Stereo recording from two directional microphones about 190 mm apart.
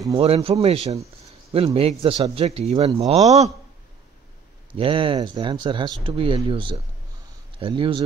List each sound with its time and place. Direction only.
0.0 s speech: 30° right (ahead or behind)
4.7 s speech: 30° right (ahead or behind)